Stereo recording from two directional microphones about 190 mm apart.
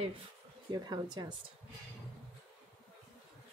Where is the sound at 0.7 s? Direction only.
20° right (ahead or behind).